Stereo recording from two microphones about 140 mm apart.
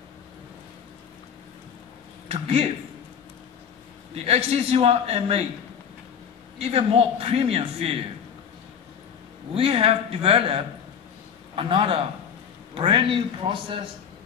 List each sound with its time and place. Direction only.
2.2 s speech: 45° right (ahead or behind)
4.1 s a man's voice: 45° right (ahead or behind)
6.6 s a man's voice: 45° right (ahead or behind)
9.5 s a man's voice: 40° right (ahead or behind)